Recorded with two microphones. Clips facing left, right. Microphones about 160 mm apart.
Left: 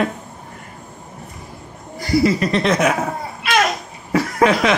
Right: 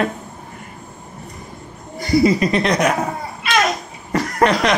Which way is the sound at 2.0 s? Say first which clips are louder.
Right 2 dB; 20° right (ahead or behind).